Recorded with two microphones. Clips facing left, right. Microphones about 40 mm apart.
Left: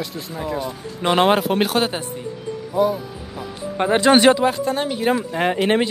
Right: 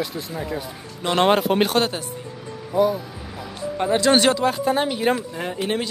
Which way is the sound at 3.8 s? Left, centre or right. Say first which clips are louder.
Left 3 dB; left.